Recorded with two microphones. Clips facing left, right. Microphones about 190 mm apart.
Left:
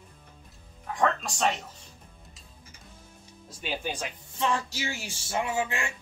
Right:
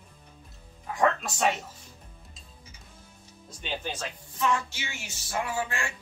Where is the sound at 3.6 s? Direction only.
10° left (ahead or behind).